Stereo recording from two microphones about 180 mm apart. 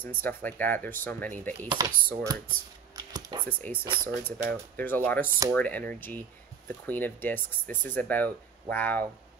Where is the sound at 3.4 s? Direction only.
10° left (ahead or behind).